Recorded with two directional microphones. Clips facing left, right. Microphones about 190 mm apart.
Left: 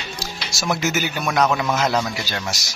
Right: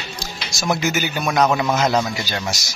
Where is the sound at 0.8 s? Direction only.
Centre (ahead or behind).